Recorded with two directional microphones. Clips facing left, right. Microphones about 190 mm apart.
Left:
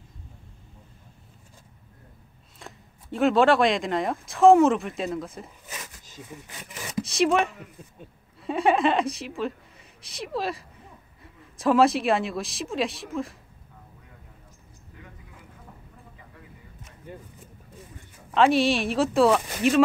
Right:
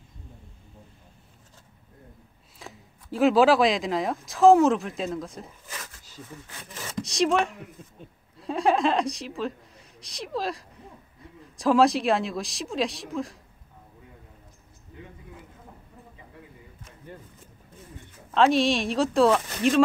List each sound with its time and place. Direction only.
2.6 s speech: centre (ahead or behind)
5.7 s a sound: 15° left (ahead or behind)
7.0 s speech: centre (ahead or behind)
18.3 s speech: centre (ahead or behind)